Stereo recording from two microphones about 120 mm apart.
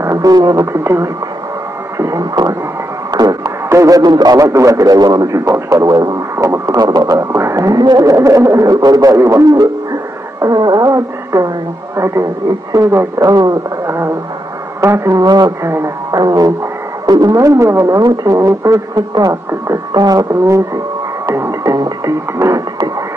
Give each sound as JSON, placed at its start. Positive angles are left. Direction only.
{"t": 0.0, "sound": "speech", "side_deg": -30}
{"t": 10.4, "sound": "music", "side_deg": -30}
{"t": 12.0, "sound": "speech", "side_deg": -25}
{"t": 15.6, "sound": "speech", "side_deg": -20}
{"t": 16.2, "sound": "music", "side_deg": -30}
{"t": 17.0, "sound": "speech", "side_deg": -30}
{"t": 21.3, "sound": "music", "side_deg": -25}